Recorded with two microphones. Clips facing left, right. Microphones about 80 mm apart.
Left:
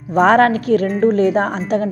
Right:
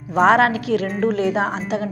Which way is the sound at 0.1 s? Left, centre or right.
Left.